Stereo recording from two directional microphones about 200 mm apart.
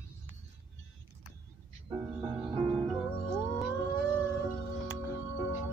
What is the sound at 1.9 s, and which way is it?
Music, 20° right (ahead or behind).